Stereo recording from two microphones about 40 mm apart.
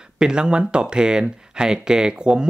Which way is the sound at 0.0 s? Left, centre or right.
Right.